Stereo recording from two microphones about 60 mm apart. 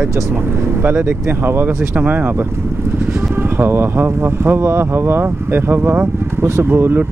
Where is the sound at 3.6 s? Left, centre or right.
Right.